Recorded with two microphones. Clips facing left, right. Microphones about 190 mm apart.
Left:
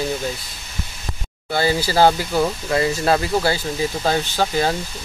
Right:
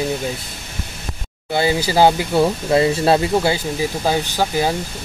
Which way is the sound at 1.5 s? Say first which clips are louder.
Right 2 dB; 15° right (ahead or behind).